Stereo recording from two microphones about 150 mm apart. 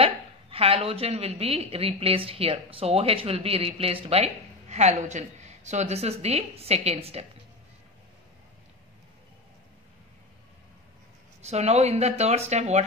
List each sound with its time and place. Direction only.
0.0 s a woman's voice: 40° right (ahead or behind)
11.4 s speech: 45° right (ahead or behind)